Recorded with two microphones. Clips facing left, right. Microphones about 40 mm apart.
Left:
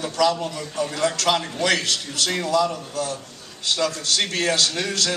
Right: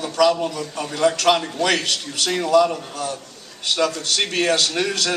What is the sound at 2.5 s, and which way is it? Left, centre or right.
Mantra, right.